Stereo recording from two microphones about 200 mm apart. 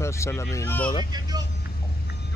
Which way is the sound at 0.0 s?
15° left (ahead or behind).